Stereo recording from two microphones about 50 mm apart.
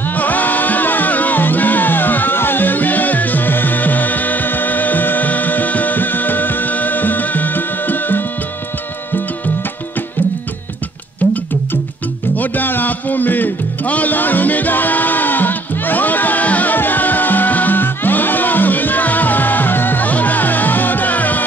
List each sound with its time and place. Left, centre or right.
0.1 s music: left
12.4 s music: left